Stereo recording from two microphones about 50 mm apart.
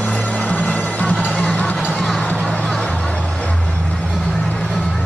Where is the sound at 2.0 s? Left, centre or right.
Centre.